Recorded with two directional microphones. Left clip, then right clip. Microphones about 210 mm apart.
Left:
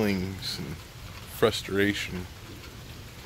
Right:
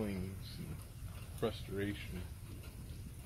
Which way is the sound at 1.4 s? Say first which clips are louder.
Left 15 dB; 55° left (ahead or behind).